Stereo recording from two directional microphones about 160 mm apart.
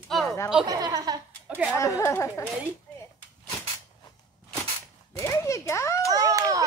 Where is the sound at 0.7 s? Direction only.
25° right (ahead or behind).